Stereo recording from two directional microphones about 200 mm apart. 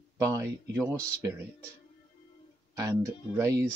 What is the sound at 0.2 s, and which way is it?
Speech, 15° right (ahead or behind).